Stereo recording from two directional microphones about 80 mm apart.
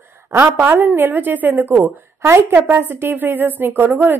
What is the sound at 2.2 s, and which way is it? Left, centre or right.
A woman's voice, right.